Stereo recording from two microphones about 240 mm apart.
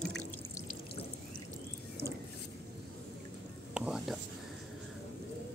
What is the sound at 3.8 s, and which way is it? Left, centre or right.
Whispering, centre.